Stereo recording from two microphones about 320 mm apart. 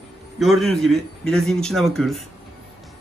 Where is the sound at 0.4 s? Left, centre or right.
Centre.